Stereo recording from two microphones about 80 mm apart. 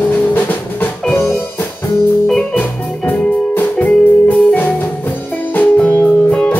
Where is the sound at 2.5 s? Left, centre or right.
Left.